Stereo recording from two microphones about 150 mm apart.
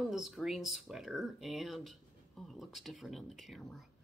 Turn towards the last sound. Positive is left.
turn(degrees=0)  # may be behind; listen again after turning